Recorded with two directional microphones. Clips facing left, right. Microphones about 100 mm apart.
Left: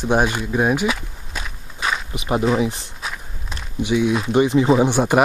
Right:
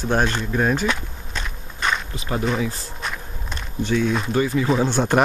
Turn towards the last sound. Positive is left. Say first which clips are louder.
# left 3 dB
turn(degrees=10)  # may be behind; listen again after turning